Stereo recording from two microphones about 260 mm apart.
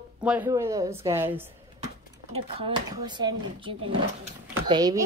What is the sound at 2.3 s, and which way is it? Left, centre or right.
A woman's voice, right.